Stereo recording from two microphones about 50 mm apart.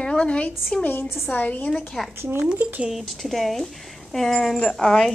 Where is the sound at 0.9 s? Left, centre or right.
Left.